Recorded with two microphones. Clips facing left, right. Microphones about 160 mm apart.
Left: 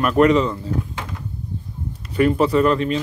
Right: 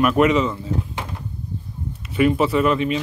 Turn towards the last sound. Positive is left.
turn(degrees=-5)  # may be behind; listen again after turning